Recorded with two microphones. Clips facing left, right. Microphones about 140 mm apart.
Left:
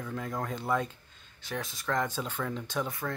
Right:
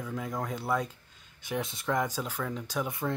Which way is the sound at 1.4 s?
20° right (ahead or behind).